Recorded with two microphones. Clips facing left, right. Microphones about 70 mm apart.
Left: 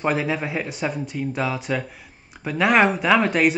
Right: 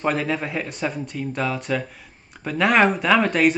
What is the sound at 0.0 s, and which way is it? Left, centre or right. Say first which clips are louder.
Speech: even; centre.